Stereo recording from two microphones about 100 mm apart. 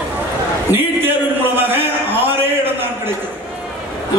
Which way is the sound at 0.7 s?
20° right (ahead or behind).